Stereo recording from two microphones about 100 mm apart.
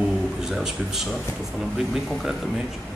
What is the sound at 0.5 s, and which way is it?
Speech, 5° right (ahead or behind).